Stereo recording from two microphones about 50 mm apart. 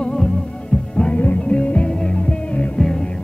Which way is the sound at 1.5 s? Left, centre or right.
Left.